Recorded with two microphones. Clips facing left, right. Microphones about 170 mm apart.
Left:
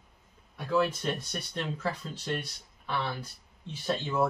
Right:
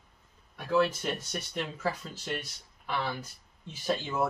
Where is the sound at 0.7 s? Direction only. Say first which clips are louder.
Right 1 dB; 10° right (ahead or behind).